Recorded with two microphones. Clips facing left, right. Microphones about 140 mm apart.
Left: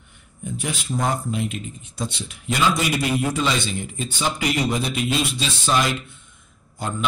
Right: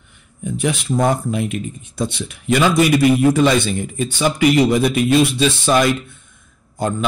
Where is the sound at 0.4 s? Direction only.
75° right (ahead or behind); by 5.9 s 55° right (ahead or behind).